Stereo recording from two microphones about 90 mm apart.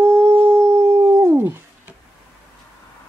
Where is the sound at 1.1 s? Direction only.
30° right (ahead or behind).